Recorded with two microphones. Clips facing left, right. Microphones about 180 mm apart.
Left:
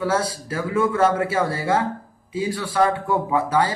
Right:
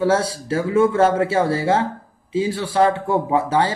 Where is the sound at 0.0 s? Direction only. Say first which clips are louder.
Right 4 dB; 25° right (ahead or behind).